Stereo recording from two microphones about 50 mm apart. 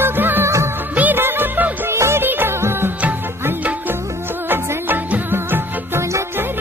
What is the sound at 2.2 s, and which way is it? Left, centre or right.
Music, right.